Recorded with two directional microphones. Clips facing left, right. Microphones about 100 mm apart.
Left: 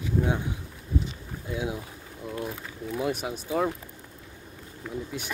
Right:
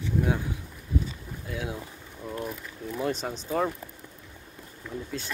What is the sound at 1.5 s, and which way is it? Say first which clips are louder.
Speech: left 3 dB; 20° left (ahead or behind).